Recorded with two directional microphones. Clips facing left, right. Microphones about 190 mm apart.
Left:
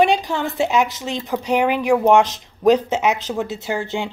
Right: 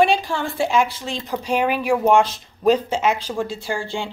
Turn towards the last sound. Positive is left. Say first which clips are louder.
# left 2 dB
turn(degrees=20)  # may be behind; listen again after turning